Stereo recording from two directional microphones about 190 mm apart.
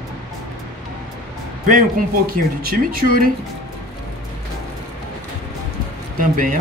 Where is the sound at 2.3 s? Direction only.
50° right (ahead or behind).